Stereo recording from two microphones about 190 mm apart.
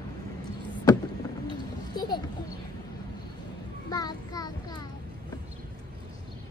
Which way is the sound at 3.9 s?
20° left (ahead or behind).